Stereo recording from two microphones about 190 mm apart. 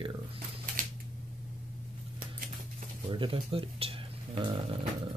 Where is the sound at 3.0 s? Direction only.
25° right (ahead or behind).